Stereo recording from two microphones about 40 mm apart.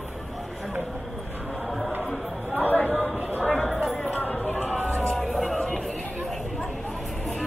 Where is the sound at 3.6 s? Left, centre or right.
Centre.